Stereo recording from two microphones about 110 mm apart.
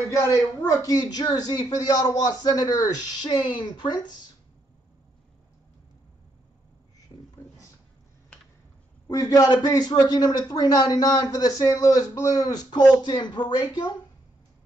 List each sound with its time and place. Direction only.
0.7 s a man's voice: 35° left (ahead or behind)
7.1 s a sound: 35° left (ahead or behind)
9.0 s a man's voice: 35° left (ahead or behind)